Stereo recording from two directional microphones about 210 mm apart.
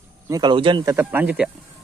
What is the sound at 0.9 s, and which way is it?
Speech, 5° right (ahead or behind).